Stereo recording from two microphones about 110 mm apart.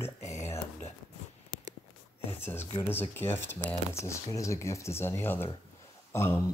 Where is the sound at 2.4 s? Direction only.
20° left (ahead or behind).